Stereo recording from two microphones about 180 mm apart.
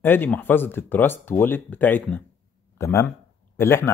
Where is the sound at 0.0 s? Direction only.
10° left (ahead or behind).